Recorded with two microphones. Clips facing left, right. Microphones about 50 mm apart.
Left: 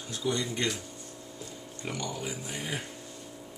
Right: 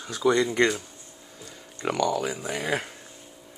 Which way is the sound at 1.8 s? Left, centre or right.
Right.